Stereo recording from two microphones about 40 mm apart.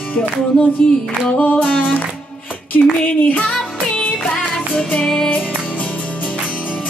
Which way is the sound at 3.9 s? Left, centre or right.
Left.